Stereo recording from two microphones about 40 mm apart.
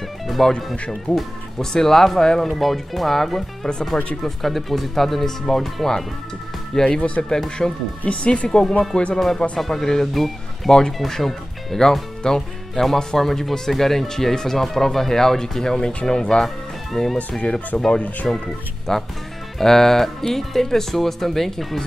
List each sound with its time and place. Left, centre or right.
0.4 s speech: centre
0.7 s speech: left
1.1 s speech: centre
2.4 s speech: centre; by 7.7 s left
8.0 s speech: left
8.5 s speech: centre
16.4 s speech: centre
17.4 s speech: left
18.9 s speech: centre